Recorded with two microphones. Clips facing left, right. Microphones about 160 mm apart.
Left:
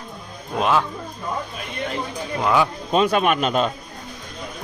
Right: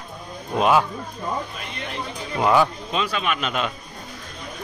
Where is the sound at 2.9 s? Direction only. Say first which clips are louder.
Left 8 dB; 50° left (ahead or behind).